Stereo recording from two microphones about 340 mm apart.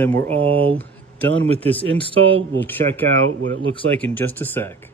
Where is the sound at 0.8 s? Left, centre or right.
Centre.